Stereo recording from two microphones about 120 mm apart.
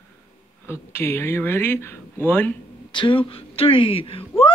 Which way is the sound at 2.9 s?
45° left (ahead or behind).